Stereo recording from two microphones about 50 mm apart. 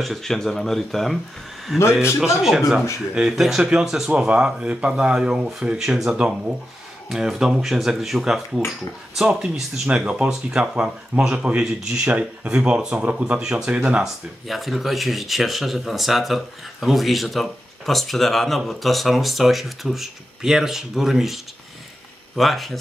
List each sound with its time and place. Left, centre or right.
0.0 s speech: centre
2.0 s speech: centre
6.1 s speech: right
7.1 s speech: centre
14.0 s speech: centre